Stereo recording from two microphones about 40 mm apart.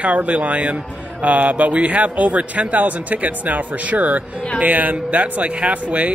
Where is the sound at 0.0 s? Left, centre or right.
Right.